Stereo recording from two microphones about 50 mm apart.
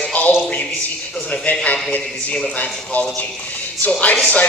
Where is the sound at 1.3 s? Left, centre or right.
Left.